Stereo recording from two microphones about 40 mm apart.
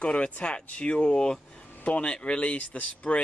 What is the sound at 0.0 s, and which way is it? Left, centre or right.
Speech, left.